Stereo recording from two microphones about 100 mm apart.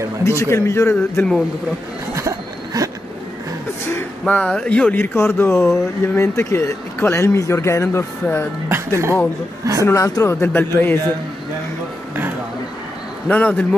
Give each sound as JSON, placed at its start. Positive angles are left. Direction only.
{"t": 0.2, "sound": "speech", "side_deg": 30}
{"t": 2.1, "sound": "a sound", "side_deg": -30}
{"t": 4.3, "sound": "speech", "side_deg": 15}
{"t": 8.6, "sound": "speech", "side_deg": -25}
{"t": 9.8, "sound": "speech", "side_deg": 35}
{"t": 13.3, "sound": "speech", "side_deg": 15}